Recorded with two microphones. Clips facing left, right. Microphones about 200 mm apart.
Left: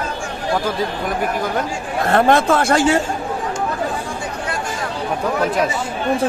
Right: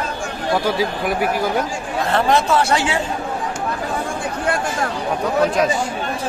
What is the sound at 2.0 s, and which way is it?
Speech, 50° left (ahead or behind).